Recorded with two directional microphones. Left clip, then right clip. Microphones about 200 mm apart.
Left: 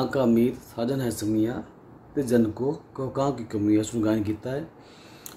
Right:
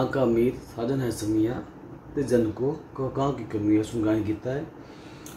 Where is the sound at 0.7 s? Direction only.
50° left (ahead or behind).